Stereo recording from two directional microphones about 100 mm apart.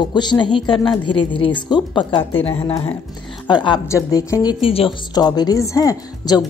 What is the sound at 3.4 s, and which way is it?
Speech, 50° left (ahead or behind).